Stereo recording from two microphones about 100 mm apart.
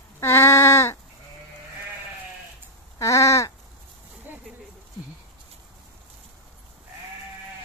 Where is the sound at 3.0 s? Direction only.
30° left (ahead or behind).